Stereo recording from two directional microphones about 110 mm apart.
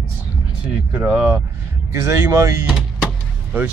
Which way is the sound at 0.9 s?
15° right (ahead or behind).